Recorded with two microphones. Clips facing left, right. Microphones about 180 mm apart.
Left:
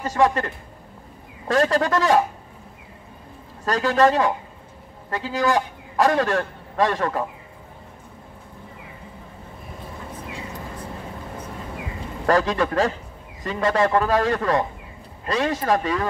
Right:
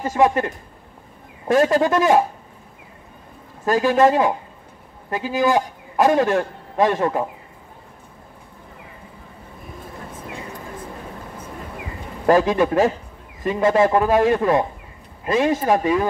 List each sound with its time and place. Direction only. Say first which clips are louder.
0.0 s a man's voice: right 2 dB; 20° right (ahead or behind)
1.5 s a man's voice: right 3 dB; 20° right (ahead or behind)
3.6 s a man's voice: right 3 dB; 20° right (ahead or behind)
12.3 s a man's voice: right 4 dB; 25° right (ahead or behind)